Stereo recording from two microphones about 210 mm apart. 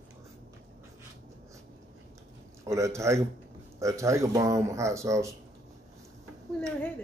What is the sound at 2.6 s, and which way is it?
Speech, 15° right (ahead or behind).